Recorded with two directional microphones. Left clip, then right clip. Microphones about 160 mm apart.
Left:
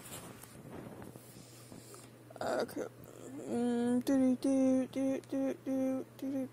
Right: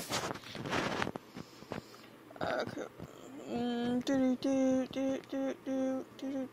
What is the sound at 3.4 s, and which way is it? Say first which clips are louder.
Speech: left 2 dB; 35° left (ahead or behind).